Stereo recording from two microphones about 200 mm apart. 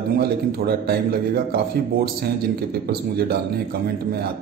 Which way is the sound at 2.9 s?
50° right (ahead or behind).